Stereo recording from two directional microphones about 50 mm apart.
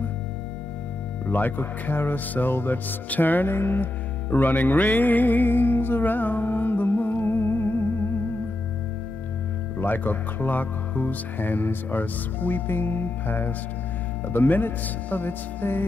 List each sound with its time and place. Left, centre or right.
1.2 s speech: left
9.8 s speech: left